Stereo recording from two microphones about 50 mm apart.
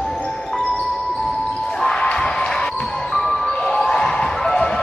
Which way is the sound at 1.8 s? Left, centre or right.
Centre.